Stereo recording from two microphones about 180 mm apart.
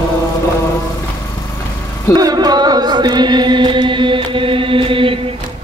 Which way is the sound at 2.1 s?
20° right (ahead or behind).